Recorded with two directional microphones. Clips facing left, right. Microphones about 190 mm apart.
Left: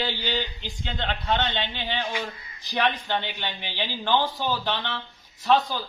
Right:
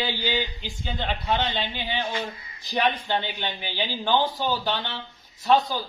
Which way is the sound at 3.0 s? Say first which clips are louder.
Right 1 dB; 10° right (ahead or behind).